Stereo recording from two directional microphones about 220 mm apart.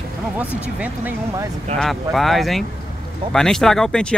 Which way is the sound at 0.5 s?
5° right (ahead or behind).